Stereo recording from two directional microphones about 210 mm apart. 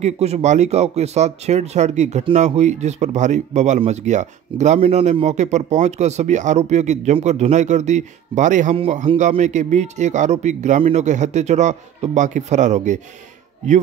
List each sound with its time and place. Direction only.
0.0 s speech: 30° right (ahead or behind)